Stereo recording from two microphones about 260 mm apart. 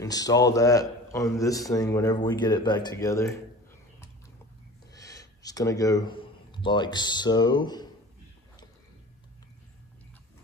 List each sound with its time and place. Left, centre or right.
0.0 s a man's voice: centre
4.9 s speech: centre